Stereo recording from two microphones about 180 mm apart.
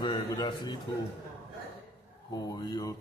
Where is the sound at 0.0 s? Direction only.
25° left (ahead or behind).